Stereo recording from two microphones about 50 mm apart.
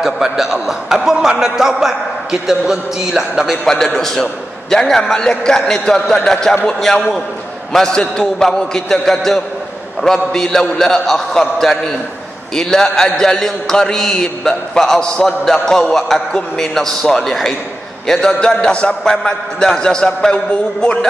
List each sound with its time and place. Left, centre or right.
0.0 s a sound: centre
1.4 s a man's voice: centre
3.6 s a man's voice: centre